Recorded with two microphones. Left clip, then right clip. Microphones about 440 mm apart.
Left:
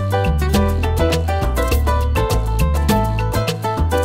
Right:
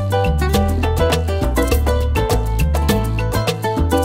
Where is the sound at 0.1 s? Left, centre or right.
Right.